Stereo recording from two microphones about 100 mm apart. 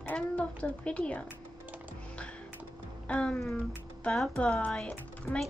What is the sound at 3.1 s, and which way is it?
Child singing, 10° left (ahead or behind).